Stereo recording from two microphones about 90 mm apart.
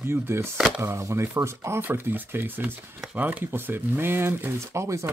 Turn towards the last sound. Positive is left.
turn(degrees=-30)  # may be behind; listen again after turning